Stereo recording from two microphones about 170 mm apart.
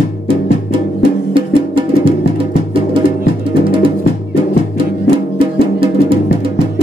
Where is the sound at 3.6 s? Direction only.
30° right (ahead or behind).